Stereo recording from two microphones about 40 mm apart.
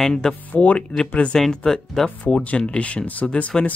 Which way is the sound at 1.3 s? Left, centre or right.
Centre.